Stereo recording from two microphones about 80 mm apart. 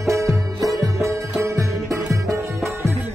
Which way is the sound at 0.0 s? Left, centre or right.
Right.